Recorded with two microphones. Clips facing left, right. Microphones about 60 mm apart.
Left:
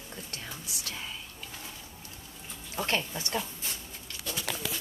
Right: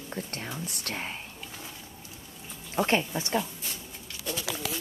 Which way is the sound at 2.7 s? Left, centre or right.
Right.